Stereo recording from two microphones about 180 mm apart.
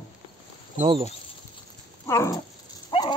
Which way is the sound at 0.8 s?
30° right (ahead or behind).